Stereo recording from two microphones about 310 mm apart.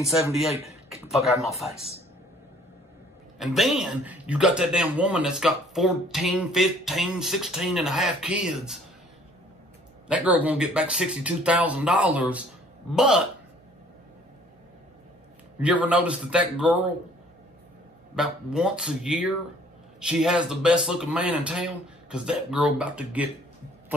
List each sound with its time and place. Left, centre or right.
0.0 s speech: centre
3.3 s speech: centre
10.0 s speech: centre
15.6 s speech: centre
18.1 s speech: centre